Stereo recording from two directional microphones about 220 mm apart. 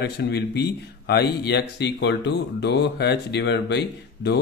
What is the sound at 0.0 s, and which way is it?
Speech, 45° left (ahead or behind).